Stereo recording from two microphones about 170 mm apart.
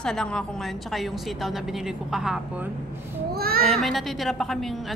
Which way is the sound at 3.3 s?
65° right (ahead or behind).